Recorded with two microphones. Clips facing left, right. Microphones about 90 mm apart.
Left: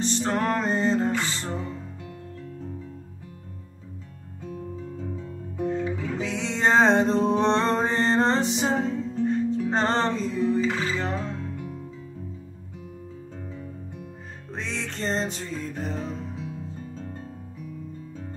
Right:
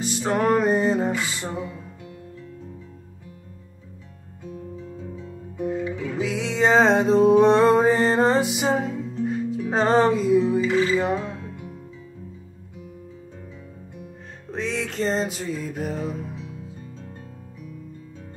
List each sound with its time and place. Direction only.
0.0 s music: 5° right (ahead or behind)
6.1 s music: 5° right (ahead or behind)
14.5 s music: centre (ahead or behind)
16.3 s music: 35° left (ahead or behind)